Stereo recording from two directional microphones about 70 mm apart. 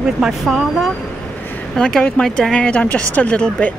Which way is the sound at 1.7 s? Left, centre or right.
Centre.